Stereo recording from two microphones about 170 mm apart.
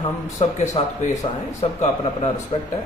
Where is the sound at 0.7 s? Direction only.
40° left (ahead or behind).